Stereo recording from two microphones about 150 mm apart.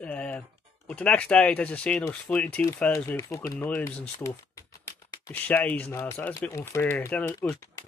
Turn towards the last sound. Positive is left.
turn(degrees=15)  # may be behind; listen again after turning